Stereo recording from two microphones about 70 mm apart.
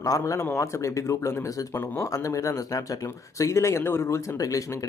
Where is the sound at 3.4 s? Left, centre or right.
Left.